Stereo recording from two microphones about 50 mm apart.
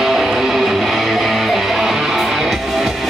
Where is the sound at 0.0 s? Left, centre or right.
Centre.